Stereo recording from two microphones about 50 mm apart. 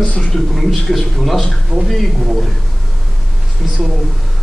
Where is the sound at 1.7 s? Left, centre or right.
Right.